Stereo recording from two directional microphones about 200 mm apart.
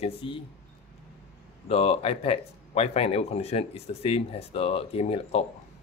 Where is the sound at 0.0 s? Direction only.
25° left (ahead or behind).